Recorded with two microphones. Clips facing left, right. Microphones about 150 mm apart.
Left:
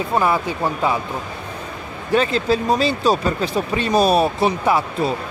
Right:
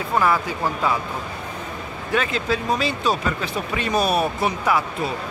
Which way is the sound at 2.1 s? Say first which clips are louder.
Left 5 dB; 35° left (ahead or behind).